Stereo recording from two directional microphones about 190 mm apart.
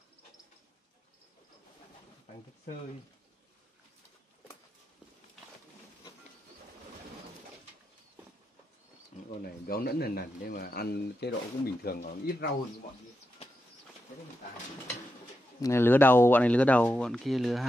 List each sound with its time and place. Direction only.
9.4 s speech: 50° left (ahead or behind)
15.6 s speech: 10° left (ahead or behind)